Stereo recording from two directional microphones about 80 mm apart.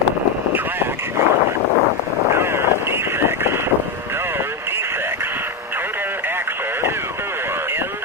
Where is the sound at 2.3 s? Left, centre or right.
Right.